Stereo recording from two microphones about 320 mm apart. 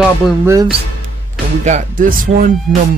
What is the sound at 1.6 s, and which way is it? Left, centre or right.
Speech, right.